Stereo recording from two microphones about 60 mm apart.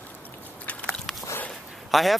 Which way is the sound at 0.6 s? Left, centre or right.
Centre.